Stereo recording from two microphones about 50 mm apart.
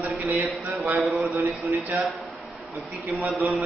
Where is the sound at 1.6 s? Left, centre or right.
Centre.